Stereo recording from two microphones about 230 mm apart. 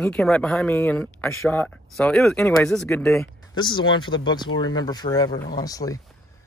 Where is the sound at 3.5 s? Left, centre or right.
Centre.